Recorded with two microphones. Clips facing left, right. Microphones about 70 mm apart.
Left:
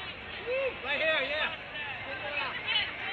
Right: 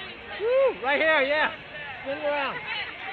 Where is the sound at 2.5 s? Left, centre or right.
Right.